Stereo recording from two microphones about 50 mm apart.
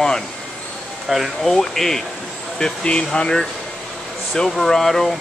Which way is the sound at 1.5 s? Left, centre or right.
Centre.